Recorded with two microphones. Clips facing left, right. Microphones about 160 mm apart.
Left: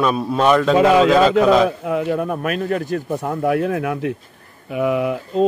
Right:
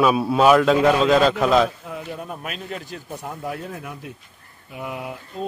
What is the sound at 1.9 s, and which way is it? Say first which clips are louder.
Speech: left 12 dB; 65° left (ahead or behind).